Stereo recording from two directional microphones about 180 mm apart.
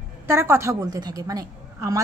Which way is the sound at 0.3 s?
15° right (ahead or behind).